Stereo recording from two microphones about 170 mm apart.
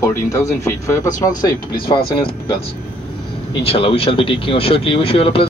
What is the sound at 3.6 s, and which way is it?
Speech, 35° left (ahead or behind).